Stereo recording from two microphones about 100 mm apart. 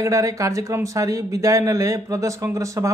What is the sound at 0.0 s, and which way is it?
A man's voice, 35° right (ahead or behind).